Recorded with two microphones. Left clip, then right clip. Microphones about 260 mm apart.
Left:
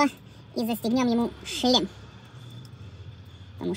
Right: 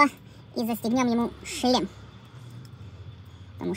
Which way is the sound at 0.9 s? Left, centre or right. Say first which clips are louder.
Even; centre.